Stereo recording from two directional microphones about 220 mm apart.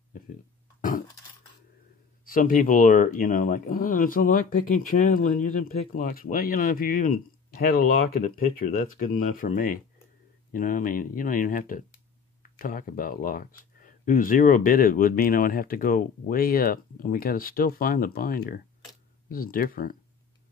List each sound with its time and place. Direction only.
0.7 s burping: 40° left (ahead or behind)
2.2 s speech: 40° left (ahead or behind)